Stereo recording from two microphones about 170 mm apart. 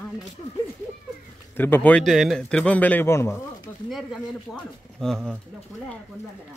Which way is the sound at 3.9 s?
Centre (ahead or behind).